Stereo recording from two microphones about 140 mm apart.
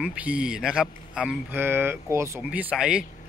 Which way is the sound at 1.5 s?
15° right (ahead or behind).